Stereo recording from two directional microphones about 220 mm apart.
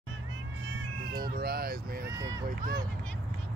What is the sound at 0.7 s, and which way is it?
Cat, 55° right (ahead or behind).